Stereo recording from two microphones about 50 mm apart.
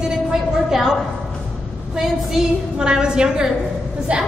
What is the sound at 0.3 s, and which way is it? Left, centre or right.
Speech, centre.